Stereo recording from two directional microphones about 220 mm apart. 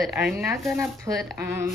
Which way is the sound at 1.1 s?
Centre (ahead or behind).